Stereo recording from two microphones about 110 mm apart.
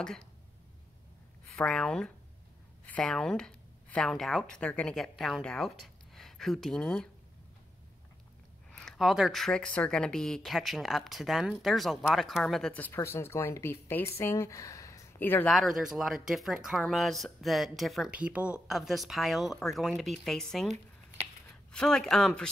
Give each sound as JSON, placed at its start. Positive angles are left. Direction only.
{"t": 1.5, "sound": "speech", "side_deg": 5}
{"t": 8.7, "sound": "speech", "side_deg": 0}
{"t": 12.7, "sound": "speech", "side_deg": 15}
{"t": 15.1, "sound": "speech", "side_deg": 20}
{"t": 15.4, "sound": "speech", "side_deg": 0}
{"t": 18.1, "sound": "speech", "side_deg": -10}
{"t": 21.7, "sound": "speech", "side_deg": 5}